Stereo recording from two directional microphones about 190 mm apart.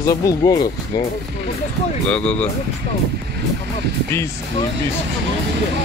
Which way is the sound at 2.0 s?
5° left (ahead or behind).